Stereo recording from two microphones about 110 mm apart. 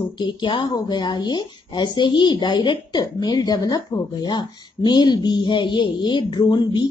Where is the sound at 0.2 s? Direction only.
45° left (ahead or behind).